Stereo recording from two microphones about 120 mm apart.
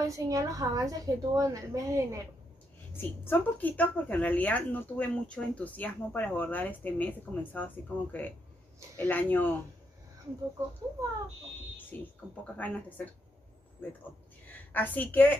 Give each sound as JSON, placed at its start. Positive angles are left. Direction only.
{"t": 0.0, "sound": "a woman's voice", "side_deg": -30}
{"t": 3.0, "sound": "a woman's voice", "side_deg": 15}
{"t": 11.9, "sound": "a woman's voice", "side_deg": 15}
{"t": 14.4, "sound": "a sound", "side_deg": 15}